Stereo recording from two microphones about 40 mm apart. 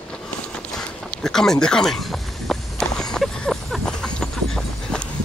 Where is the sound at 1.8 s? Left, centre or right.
Centre.